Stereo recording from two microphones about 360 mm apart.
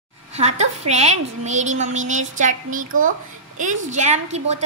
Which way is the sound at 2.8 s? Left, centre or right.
Right.